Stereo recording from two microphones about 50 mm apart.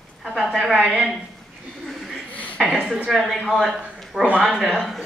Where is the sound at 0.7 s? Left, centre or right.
Right.